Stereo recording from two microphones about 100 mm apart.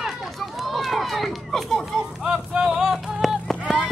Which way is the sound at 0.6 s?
Centre (ahead or behind).